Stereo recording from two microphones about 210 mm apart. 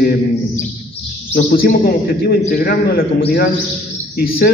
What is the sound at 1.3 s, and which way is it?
A man's voice, 45° left (ahead or behind).